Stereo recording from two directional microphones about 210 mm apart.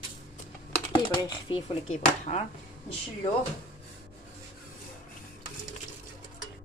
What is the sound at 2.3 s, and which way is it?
Speech, 30° left (ahead or behind).